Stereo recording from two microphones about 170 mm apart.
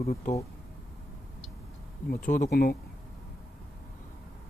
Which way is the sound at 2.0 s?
50° left (ahead or behind).